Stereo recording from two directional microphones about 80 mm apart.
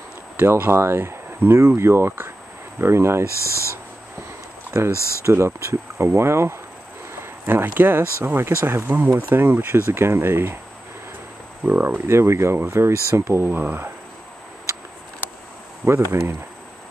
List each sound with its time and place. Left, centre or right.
0.4 s speech: right
3.4 s speech: left
4.9 s speech: left
5.2 s speech: right
11.6 s speech: right
15.8 s speech: right